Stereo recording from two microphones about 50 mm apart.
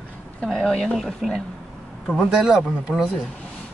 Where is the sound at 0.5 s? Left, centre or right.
Centre.